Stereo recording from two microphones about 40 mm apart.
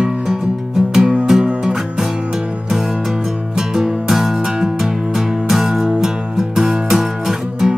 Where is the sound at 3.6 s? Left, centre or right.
Centre.